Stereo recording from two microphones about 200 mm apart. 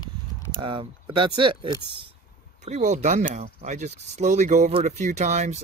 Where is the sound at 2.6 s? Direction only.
35° right (ahead or behind).